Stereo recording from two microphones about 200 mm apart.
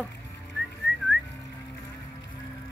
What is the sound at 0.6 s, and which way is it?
Whistling, centre (ahead or behind).